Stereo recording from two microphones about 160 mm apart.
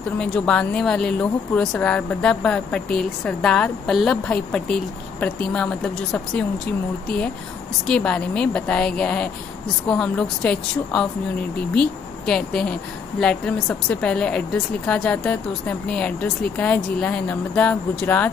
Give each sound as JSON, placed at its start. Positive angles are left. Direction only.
{"t": 0.2, "sound": "speech", "side_deg": 5}
{"t": 7.8, "sound": "speech", "side_deg": 5}